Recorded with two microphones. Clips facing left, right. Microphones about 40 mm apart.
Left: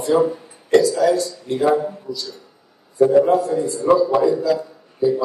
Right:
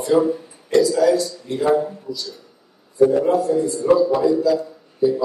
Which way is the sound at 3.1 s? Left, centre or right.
Left.